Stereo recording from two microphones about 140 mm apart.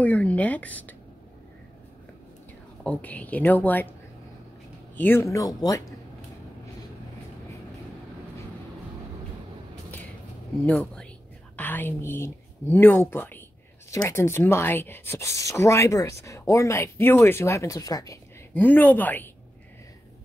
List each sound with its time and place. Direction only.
0.0 s a woman's voice: 10° left (ahead or behind)
2.8 s a woman's voice: 10° left (ahead or behind)
4.9 s speech: 15° left (ahead or behind)
10.6 s speech: 5° left (ahead or behind); by 18.2 s 25° left (ahead or behind)
18.5 s a woman's voice: 10° left (ahead or behind)